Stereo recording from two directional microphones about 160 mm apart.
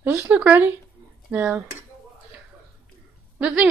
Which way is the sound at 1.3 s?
10° right (ahead or behind).